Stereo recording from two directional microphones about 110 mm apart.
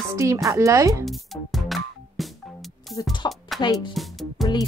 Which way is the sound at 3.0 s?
40° left (ahead or behind).